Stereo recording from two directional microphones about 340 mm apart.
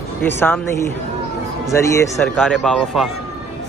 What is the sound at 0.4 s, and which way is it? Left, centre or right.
Speech, centre.